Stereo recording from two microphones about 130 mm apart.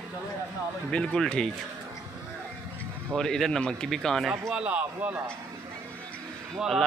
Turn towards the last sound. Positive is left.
turn(degrees=0)  # may be behind; listen again after turning